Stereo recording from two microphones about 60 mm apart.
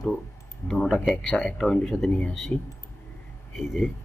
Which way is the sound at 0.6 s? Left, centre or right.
Left.